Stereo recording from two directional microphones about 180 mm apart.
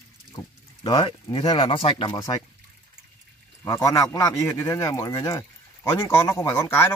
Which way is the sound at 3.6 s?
20° left (ahead or behind).